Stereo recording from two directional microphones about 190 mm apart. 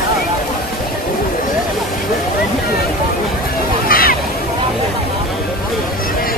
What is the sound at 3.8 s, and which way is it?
Hubbub, 50° left (ahead or behind).